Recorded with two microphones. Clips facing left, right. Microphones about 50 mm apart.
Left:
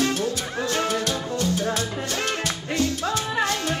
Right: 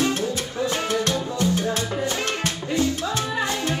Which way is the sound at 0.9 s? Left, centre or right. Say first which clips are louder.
Right 2 dB; right.